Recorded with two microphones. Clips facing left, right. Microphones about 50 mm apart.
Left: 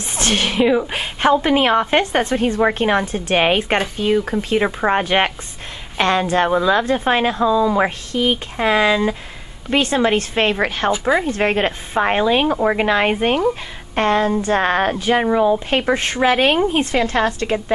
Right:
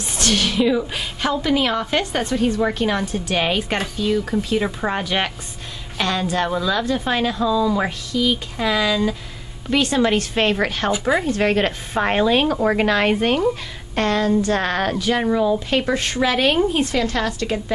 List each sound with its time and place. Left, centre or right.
0.1 s a woman's voice: left
8.1 s a woman's voice: left
12.0 s speech: centre; by 17.7 s left